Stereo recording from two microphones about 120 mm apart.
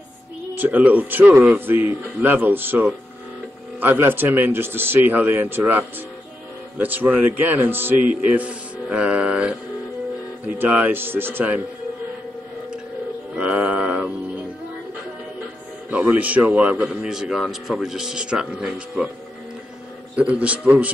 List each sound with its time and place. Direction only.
0.6 s a man's voice: 15° right (ahead or behind)
10.6 s a man's voice: 15° right (ahead or behind)
13.4 s a sound: 10° right (ahead or behind)
15.9 s a man's voice: 10° right (ahead or behind)
20.2 s a man's voice: 10° right (ahead or behind)